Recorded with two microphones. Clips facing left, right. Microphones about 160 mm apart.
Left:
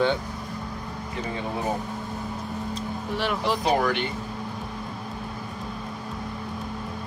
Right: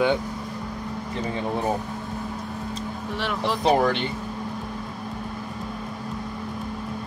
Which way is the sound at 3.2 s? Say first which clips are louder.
Left 1 dB; centre (ahead or behind).